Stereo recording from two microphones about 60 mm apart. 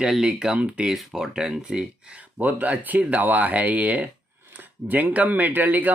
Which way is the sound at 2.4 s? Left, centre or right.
Right.